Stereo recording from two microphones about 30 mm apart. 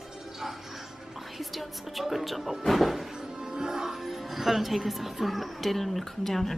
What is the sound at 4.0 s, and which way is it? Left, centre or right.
A woman's voice, centre.